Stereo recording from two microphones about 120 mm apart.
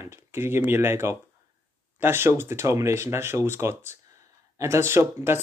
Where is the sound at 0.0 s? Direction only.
20° right (ahead or behind).